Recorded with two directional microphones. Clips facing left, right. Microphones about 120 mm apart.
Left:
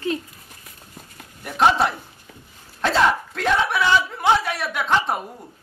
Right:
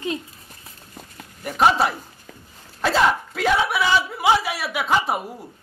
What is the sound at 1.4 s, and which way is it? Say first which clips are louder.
Speech: even; centre (ahead or behind).